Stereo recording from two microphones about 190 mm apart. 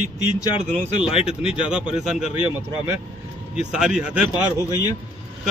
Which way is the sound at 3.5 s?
5° right (ahead or behind).